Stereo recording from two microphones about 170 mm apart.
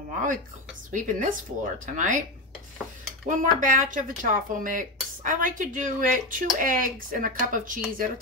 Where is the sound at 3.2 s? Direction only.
50° right (ahead or behind).